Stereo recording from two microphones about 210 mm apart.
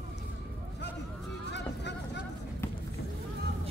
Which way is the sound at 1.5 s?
55° left (ahead or behind).